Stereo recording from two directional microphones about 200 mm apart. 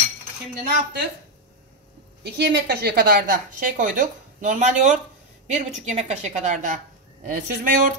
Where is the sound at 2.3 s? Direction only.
55° right (ahead or behind).